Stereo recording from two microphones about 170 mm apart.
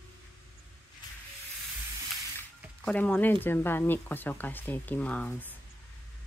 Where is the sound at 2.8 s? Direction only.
10° left (ahead or behind).